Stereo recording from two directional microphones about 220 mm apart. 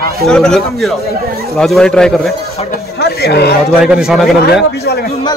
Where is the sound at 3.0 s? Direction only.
50° left (ahead or behind).